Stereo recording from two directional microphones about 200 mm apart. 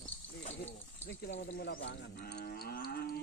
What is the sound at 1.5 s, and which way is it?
Livestock, 55° left (ahead or behind).